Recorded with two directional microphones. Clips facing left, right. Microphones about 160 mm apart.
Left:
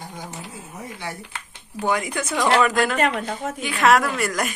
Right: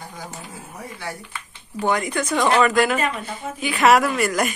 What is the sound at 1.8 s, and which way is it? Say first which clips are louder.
A woman's voice: right 2 dB; 5° left (ahead or behind).